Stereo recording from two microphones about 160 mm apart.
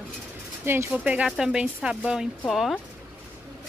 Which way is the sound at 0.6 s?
10° right (ahead or behind).